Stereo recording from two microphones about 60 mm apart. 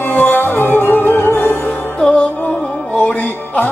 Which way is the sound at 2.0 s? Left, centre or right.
Centre.